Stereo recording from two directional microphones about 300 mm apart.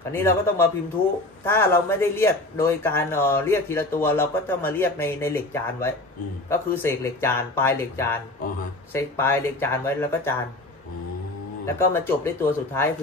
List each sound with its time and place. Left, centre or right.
0.1 s speech: centre
11.6 s speech: centre